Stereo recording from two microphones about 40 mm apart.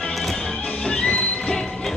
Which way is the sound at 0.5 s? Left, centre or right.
Left.